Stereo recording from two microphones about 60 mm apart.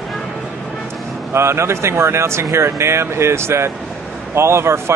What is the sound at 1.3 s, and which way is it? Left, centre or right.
Speech, right.